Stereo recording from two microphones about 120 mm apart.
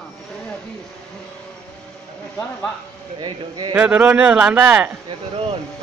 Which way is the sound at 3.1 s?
40° right (ahead or behind).